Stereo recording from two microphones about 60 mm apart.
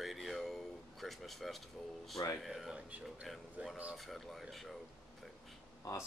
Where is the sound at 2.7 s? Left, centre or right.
Centre.